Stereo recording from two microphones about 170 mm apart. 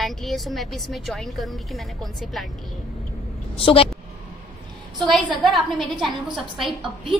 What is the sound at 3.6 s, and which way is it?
Speech, 30° left (ahead or behind).